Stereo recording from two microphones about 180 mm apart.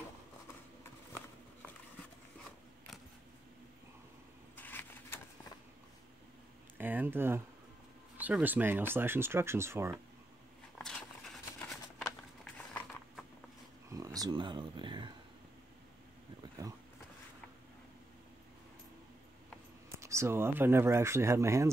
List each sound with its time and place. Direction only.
4.6 s vehicle: 10° left (ahead or behind)
6.8 s a sound: 10° right (ahead or behind)
8.2 s speech: 10° right (ahead or behind)
10.8 s a sound: 5° left (ahead or behind)
13.8 s speech: 20° right (ahead or behind)
20.0 s speech: 15° right (ahead or behind)